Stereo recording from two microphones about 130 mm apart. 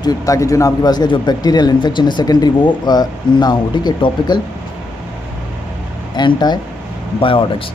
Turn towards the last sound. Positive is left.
turn(degrees=40)  # may be behind; listen again after turning